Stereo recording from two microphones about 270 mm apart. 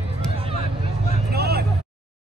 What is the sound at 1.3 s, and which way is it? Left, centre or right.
Vehicle, right.